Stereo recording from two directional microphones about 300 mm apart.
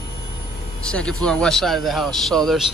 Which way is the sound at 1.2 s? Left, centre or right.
Centre.